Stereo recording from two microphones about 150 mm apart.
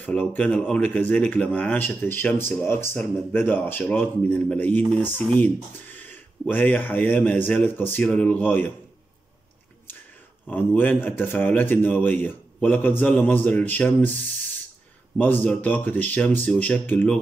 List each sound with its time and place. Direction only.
0.0 s a man's voice: 10° left (ahead or behind)
10.4 s a man's voice: 10° left (ahead or behind)
15.1 s a man's voice: 10° left (ahead or behind)